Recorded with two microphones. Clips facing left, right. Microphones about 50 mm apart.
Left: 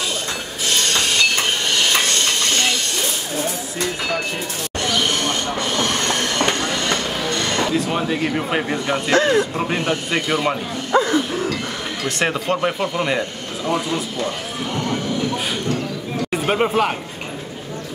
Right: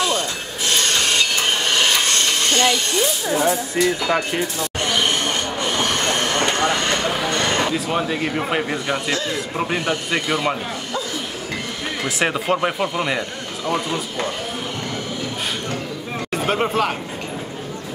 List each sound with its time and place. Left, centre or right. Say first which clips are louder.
3.3 s speech: right 5 dB; right
5.6 s vehicle: right 1 dB; centre
7.7 s speech: left 1 dB; centre
9.1 s a man's voice: left 8 dB; left
9.4 s speech: left 2 dB; centre
10.9 s bow-wow: left 13 dB; left
12.2 s speech: even; centre
16.3 s speech: left 1 dB; centre